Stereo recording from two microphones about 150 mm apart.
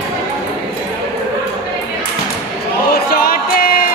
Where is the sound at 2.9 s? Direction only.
85° left.